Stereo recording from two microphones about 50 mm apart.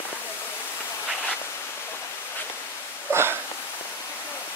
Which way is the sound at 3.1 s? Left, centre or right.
Right.